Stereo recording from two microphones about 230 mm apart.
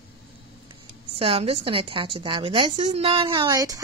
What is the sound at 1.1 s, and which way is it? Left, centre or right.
A woman's voice, right.